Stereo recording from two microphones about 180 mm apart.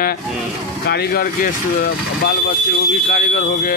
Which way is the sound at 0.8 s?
65° left (ahead or behind).